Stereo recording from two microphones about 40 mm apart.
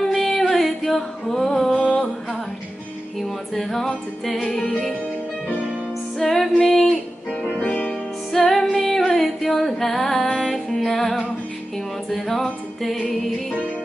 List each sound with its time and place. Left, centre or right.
0.1 s a sound: centre
3.2 s music: centre
6.1 s music: centre
7.6 s music: left
8.4 s music: centre
12.8 s music: centre